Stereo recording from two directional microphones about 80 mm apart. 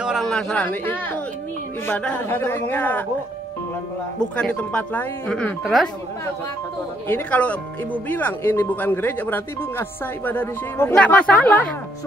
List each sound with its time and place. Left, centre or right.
0.0 s a sound: centre
0.6 s speech: left
4.2 s speech: centre
5.6 s speech: centre
7.1 s speech: centre